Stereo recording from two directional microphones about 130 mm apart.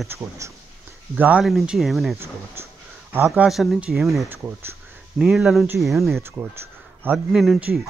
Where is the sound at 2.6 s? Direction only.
15° right (ahead or behind).